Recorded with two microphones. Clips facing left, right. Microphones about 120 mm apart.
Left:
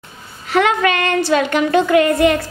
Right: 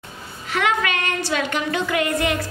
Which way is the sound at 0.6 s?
45° left (ahead or behind).